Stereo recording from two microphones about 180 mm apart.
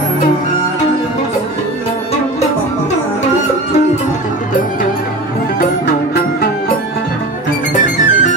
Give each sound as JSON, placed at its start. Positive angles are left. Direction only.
{"t": 7.7, "sound": "music", "side_deg": 45}